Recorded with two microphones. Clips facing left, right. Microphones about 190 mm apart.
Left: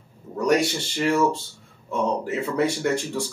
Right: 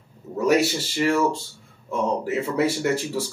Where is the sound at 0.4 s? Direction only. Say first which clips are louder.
Right 1 dB; 5° right (ahead or behind).